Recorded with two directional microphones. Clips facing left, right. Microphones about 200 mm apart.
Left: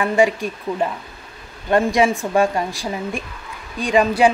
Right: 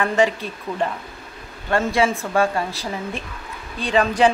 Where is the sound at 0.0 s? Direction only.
10° left (ahead or behind).